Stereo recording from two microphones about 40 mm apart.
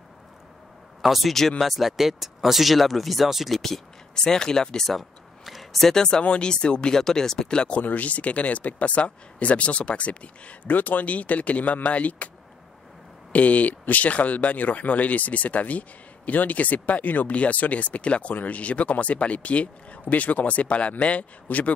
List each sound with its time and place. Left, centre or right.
1.0 s speech: centre
4.1 s speech: centre
4.8 s a sound: centre
5.9 s speech: centre
6.2 s speech: left
7.8 s speech: left
10.7 s speech: left
13.3 s speech: left